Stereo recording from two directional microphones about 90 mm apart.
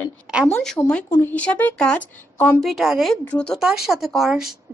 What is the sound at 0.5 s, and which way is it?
Speech, 5° left (ahead or behind).